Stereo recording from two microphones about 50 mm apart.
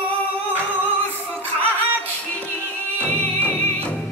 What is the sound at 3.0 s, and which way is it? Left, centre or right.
Music, left.